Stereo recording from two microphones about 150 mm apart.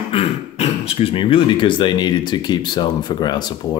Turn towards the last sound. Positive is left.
turn(degrees=30)  # may be behind; listen again after turning